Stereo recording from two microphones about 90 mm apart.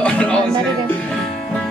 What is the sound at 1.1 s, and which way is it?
Music, 10° left (ahead or behind).